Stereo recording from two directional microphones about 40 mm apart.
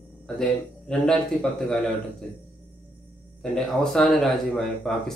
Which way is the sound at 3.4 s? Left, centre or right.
Centre.